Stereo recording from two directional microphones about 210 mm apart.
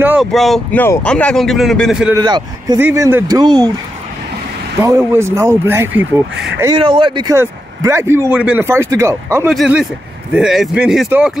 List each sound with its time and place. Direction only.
0.0 s speech: 5° right (ahead or behind)
2.1 s a man's voice: 20° right (ahead or behind)
4.8 s speech: 15° right (ahead or behind)
6.6 s speech: 20° right (ahead or behind)
9.5 s speech: centre (ahead or behind)